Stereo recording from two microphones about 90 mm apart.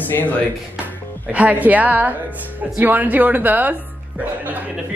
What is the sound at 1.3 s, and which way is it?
A woman's voice, 15° right (ahead or behind).